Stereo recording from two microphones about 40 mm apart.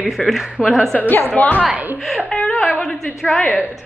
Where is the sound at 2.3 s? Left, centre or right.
Left.